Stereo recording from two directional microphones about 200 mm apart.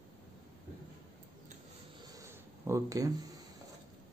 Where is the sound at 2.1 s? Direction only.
15° right (ahead or behind).